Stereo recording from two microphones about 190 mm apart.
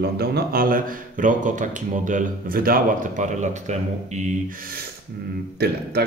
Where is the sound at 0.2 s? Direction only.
55° right (ahead or behind).